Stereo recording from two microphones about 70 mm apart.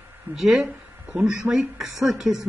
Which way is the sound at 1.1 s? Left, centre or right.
Right.